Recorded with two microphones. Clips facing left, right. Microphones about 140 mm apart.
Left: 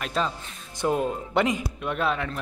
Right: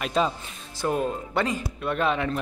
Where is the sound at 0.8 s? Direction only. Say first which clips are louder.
Left 1 dB; 20° left (ahead or behind).